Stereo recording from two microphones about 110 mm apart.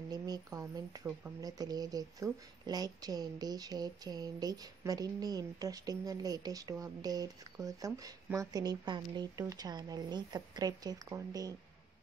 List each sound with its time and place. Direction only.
0.1 s speech: 35° right (ahead or behind)